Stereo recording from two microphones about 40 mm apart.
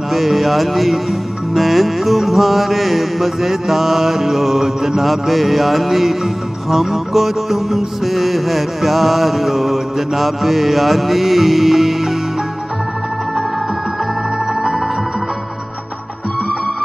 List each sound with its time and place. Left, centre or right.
0.1 s speech: centre
1.5 s music: centre
14.5 s music: centre